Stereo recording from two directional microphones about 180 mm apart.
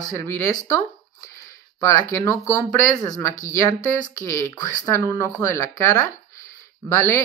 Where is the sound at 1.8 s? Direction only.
15° left (ahead or behind).